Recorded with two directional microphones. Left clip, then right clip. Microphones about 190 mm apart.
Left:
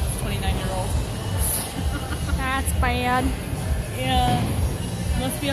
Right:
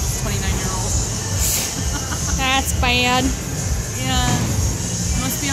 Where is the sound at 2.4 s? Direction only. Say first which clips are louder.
Right 6 dB; 25° right (ahead or behind).